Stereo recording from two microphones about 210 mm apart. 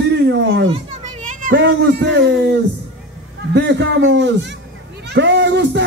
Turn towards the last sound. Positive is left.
turn(degrees=-55)  # may be behind; listen again after turning